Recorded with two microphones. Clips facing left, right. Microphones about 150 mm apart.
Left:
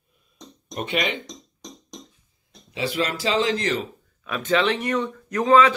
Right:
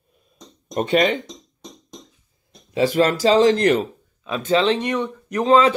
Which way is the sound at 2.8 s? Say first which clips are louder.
Right 8 dB; 45° right (ahead or behind).